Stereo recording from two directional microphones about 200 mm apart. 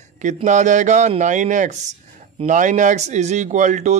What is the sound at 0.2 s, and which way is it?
Speech, 40° right (ahead or behind).